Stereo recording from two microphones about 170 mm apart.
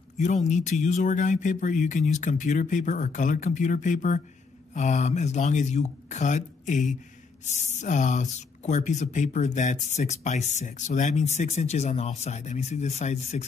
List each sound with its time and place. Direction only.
0.2 s speech: 45° left (ahead or behind)